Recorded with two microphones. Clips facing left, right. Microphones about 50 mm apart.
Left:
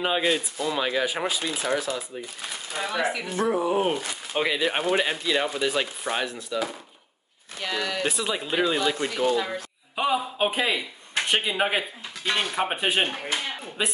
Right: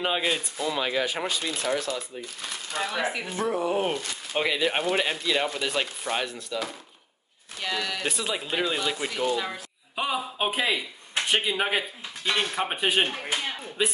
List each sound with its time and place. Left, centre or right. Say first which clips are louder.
0.0 s speech: left 2 dB; centre
3.0 s speech: left 2 dB; centre
3.3 s speech: left 3 dB; centre